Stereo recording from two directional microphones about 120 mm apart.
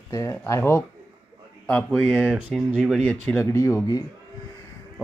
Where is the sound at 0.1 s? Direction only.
25° left (ahead or behind).